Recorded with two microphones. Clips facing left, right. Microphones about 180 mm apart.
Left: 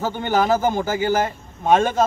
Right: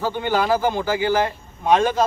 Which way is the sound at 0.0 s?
45° left (ahead or behind).